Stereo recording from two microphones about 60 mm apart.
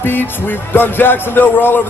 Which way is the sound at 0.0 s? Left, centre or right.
Left.